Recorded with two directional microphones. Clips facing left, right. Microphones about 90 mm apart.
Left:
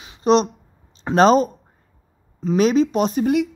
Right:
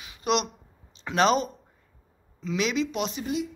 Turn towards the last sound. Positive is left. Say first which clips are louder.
# left 11 dB
turn(degrees=50)  # may be behind; listen again after turning